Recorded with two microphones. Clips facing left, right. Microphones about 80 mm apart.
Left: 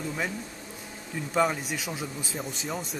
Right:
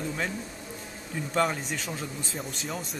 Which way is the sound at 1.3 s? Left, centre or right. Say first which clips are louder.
Left 1 dB; centre.